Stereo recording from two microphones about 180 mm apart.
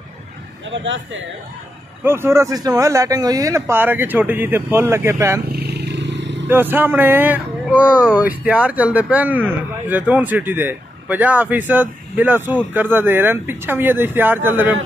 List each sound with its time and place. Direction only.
0.7 s a man's voice: 90° right
2.0 s speech: 15° right (ahead or behind)
5.5 s wild animals: 65° right (ahead or behind); by 6.4 s 80° right
6.4 s speech: 10° right (ahead or behind)